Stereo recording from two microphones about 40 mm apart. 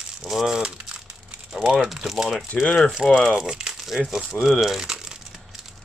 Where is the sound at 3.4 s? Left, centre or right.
Centre.